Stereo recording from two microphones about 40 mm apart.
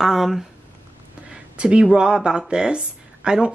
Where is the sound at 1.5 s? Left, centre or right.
Right.